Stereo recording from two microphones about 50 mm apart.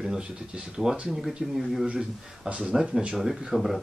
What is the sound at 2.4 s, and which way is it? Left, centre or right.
Speech, right.